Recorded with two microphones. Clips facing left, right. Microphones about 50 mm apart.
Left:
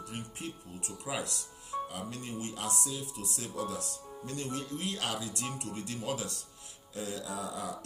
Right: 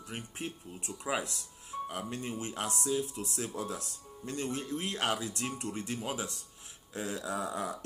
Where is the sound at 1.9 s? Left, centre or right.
Right.